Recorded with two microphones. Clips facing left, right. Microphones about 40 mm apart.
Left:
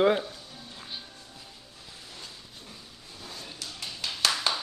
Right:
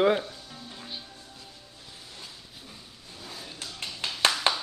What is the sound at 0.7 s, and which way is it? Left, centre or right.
Music, centre.